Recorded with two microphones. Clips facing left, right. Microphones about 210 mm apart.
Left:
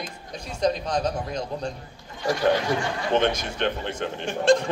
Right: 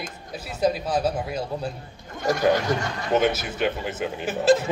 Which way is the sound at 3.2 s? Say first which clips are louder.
Right 2 dB; 5° right (ahead or behind).